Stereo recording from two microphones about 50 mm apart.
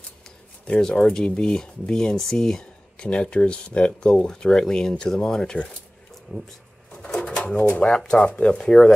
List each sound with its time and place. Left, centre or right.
0.7 s speech: centre
2.3 s a sound: centre
3.1 s speech: left
6.9 s bird: centre
7.2 s pigeon: centre
7.5 s speech: left
7.8 s speech: centre